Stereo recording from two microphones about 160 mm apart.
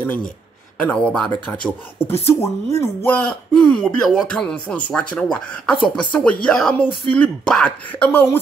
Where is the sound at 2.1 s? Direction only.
40° left (ahead or behind).